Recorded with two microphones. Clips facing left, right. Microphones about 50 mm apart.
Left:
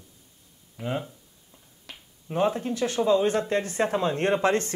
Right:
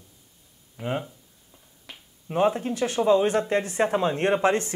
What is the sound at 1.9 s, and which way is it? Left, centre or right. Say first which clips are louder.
Finger snapping: right 1 dB; centre.